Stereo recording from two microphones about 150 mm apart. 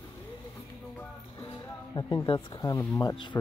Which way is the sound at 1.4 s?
25° left (ahead or behind).